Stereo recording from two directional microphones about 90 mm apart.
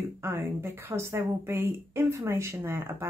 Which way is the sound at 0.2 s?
30° right (ahead or behind).